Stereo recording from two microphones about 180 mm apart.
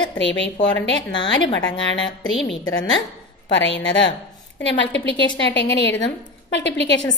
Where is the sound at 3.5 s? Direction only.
85° left.